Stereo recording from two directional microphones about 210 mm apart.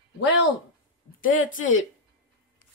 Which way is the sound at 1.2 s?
70° left (ahead or behind).